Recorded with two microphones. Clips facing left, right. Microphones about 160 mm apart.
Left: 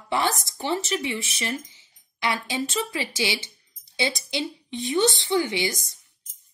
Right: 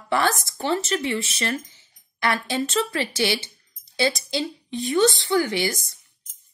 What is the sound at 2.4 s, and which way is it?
A woman's voice, 15° left (ahead or behind).